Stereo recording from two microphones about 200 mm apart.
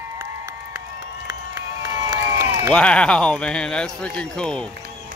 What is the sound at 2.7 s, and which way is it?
Speech, 5° left (ahead or behind).